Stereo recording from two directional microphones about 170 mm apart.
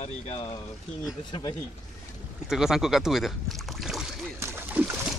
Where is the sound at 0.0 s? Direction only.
40° left (ahead or behind).